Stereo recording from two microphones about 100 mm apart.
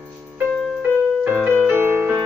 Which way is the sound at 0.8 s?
20° right (ahead or behind).